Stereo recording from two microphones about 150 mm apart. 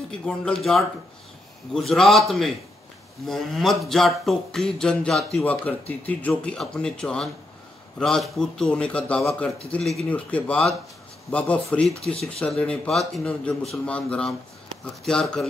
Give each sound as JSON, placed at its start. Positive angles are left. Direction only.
{"t": 0.2, "sound": "a man's voice", "side_deg": 0}